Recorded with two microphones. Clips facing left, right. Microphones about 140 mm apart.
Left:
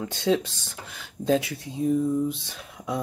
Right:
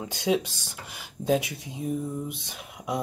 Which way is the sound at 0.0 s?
10° right (ahead or behind).